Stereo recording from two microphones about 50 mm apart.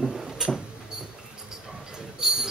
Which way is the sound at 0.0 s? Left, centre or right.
Centre.